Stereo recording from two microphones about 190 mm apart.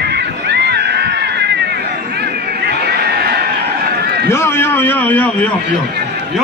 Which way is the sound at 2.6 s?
60° right (ahead or behind).